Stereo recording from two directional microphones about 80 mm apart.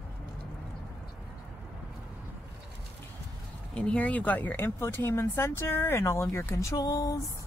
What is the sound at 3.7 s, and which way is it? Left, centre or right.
Speech, centre.